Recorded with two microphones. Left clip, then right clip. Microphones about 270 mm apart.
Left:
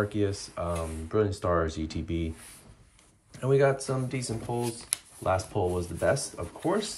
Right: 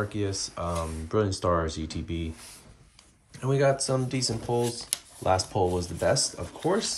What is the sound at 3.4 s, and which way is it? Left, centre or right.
Speech, centre.